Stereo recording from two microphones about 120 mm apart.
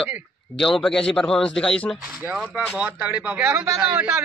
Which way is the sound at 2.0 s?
15° right (ahead or behind).